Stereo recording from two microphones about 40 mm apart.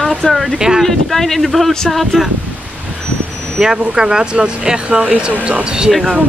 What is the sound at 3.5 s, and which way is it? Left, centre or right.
Speech, centre.